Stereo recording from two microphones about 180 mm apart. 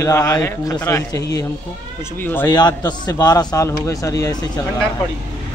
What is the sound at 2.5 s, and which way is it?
A man's voice, 25° left (ahead or behind).